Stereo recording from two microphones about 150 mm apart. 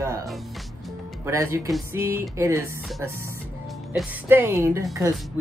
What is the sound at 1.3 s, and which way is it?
A woman's voice, 20° right (ahead or behind).